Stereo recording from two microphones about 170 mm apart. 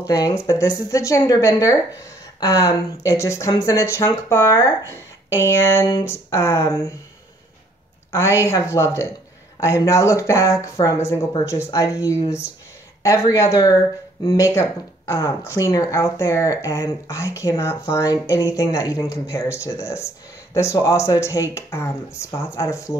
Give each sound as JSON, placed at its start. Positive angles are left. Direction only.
{"t": 0.0, "sound": "speech", "side_deg": 20}
{"t": 8.1, "sound": "speech", "side_deg": 15}